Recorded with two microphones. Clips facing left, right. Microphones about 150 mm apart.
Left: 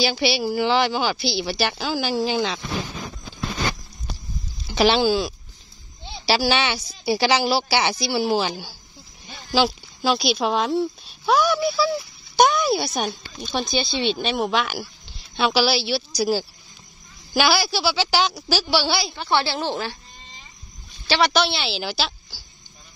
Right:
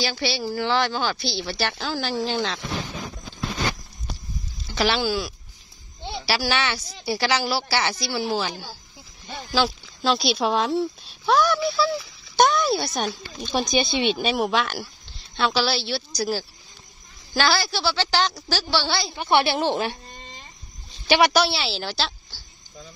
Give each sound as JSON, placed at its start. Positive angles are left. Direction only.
{"t": 0.0, "sound": "speech", "side_deg": 10}
{"t": 4.6, "sound": "speech", "side_deg": 20}
{"t": 19.1, "sound": "a woman's voice", "side_deg": -20}
{"t": 21.1, "sound": "speech", "side_deg": -10}